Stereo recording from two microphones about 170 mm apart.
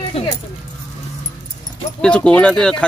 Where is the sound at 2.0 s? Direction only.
5° left (ahead or behind).